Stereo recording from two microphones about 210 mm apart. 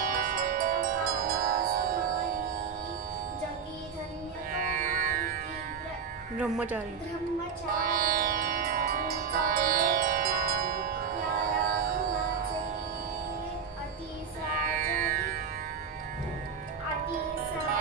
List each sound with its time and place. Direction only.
0.0 s music: 40° right (ahead or behind)
4.5 s music: 40° right (ahead or behind)
6.4 s speech: 5° right (ahead or behind)
7.7 s music: 40° right (ahead or behind)
14.6 s music: 40° right (ahead or behind)